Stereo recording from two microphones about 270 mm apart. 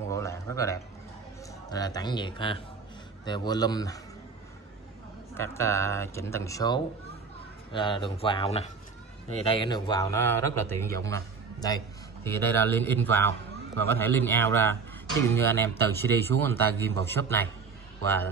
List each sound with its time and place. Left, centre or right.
0.1 s a sound: centre
1.7 s a man's voice: centre
5.4 s a man's voice: centre